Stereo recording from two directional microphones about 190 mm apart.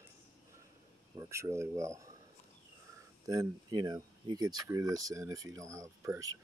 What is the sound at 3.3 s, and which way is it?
Speech, 20° right (ahead or behind).